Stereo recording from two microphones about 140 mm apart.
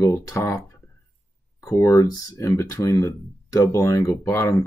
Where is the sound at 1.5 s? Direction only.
20° left (ahead or behind).